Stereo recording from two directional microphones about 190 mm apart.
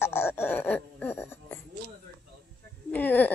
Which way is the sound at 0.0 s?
10° left (ahead or behind).